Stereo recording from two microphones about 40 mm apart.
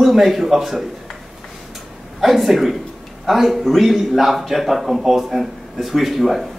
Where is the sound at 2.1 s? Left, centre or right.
Centre.